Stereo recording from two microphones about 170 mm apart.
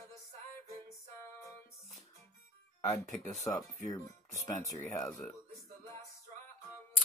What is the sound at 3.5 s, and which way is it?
Speech, 20° left (ahead or behind).